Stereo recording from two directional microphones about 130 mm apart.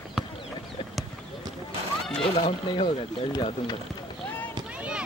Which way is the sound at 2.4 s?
45° left (ahead or behind).